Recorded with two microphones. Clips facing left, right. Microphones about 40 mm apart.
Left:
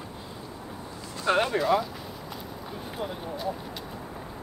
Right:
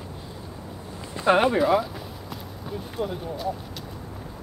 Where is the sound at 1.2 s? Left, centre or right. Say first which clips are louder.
Right 5 dB; centre.